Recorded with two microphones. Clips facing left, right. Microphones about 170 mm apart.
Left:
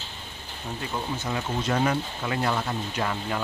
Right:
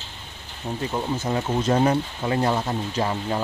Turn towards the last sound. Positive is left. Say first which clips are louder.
# right 4 dB
turn(degrees=-25)  # may be behind; listen again after turning